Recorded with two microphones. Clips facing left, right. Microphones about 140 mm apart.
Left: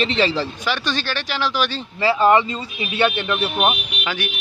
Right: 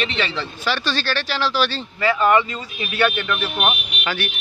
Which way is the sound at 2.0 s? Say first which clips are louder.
Left 2 dB; 30° left (ahead or behind).